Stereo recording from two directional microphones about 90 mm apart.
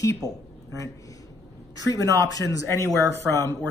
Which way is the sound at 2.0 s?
40° left (ahead or behind).